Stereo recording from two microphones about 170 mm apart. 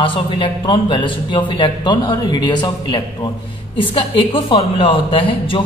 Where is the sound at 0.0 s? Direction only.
30° left (ahead or behind).